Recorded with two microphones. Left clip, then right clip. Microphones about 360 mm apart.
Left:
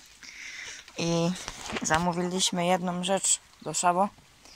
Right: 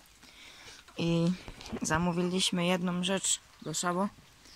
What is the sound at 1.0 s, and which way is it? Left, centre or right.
Speech, centre.